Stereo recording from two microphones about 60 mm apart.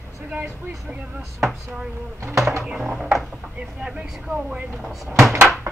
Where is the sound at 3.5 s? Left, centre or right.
Centre.